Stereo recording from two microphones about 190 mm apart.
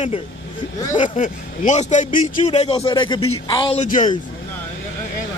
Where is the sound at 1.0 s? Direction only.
40° left (ahead or behind); by 3.8 s 25° left (ahead or behind).